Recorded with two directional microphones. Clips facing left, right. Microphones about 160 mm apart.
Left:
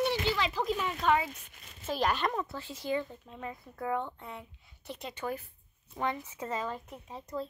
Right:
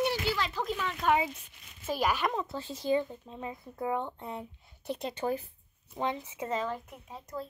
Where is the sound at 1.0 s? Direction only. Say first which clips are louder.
Right 1 dB; 15° right (ahead or behind).